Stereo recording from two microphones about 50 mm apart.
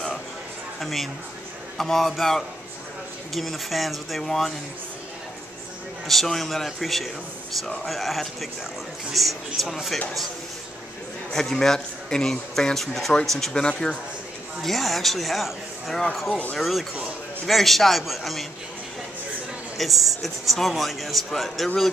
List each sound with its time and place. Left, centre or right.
0.7 s a man's voice: centre
4.2 s speech: centre
6.0 s a man's voice: centre
11.3 s speech: centre
13.6 s speech: centre
14.6 s a man's voice: centre
19.8 s a man's voice: centre